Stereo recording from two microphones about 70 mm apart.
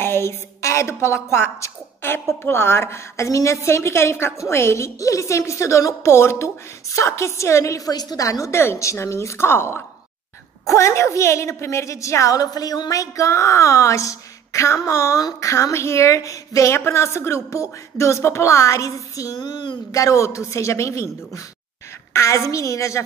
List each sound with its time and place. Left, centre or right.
0.0 s a woman's voice: left
10.7 s a woman's voice: left
16.7 s a woman's voice: left
19.9 s a woman's voice: left